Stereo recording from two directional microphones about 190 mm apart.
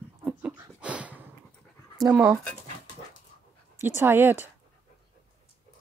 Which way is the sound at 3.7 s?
10° right (ahead or behind).